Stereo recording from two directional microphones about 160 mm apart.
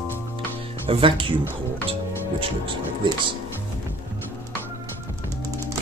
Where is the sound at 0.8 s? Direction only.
35° right (ahead or behind).